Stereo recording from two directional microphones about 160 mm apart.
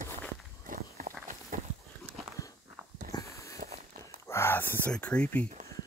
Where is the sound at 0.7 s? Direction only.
65° right (ahead or behind).